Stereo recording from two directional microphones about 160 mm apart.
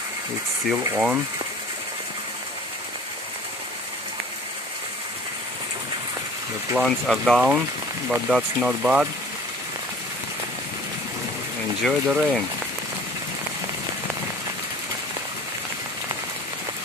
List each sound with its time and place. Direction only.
0.7 s speech: 10° right (ahead or behind)
6.7 s speech: 5° right (ahead or behind)
11.8 s speech: 5° right (ahead or behind)